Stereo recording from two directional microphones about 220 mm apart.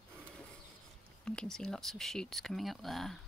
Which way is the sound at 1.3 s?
5° left (ahead or behind).